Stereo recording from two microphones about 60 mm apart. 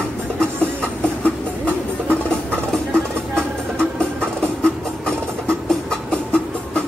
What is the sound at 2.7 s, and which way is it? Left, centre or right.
Music, centre.